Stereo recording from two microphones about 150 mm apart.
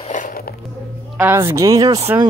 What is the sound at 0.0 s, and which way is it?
Biting, 60° left (ahead or behind).